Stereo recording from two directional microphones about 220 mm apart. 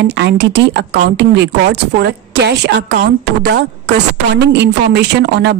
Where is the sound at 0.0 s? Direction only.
50° right (ahead or behind).